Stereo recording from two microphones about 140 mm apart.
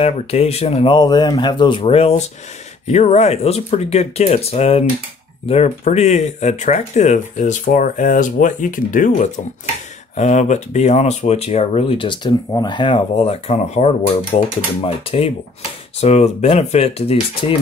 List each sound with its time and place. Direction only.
0.0 s speech: 50° left (ahead or behind)
0.9 s speech: 30° left (ahead or behind); by 9.3 s 70° left (ahead or behind)
10.1 s speech: 55° left (ahead or behind); by 15.3 s 40° left (ahead or behind)
16.0 s speech: 55° left (ahead or behind)